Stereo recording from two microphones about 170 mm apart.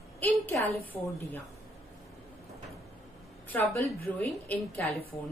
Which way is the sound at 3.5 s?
15° left (ahead or behind).